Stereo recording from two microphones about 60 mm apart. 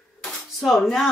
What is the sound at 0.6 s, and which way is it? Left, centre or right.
Speech, centre.